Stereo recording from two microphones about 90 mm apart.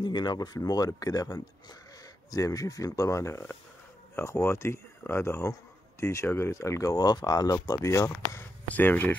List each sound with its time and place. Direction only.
0.0 s speech: 55° left (ahead or behind); by 8.1 s 35° left (ahead or behind)
8.6 s speech: 20° left (ahead or behind)